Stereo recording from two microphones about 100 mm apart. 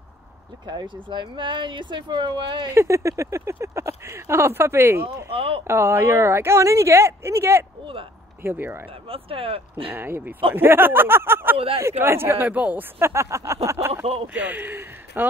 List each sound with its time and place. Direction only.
0.7 s speech: 50° right (ahead or behind)
2.7 s speech: 30° right (ahead or behind)
5.3 s speech: 70° right (ahead or behind)
5.7 s speech: 25° right (ahead or behind)
7.8 s speech: 60° right (ahead or behind)
8.4 s speech: 20° right (ahead or behind)
9.0 s speech: 70° right (ahead or behind)
9.9 s speech: 20° right (ahead or behind)
11.5 s speech: 70° right (ahead or behind)
12.0 s speech: 25° right (ahead or behind)
14.2 s speech: 15° right (ahead or behind)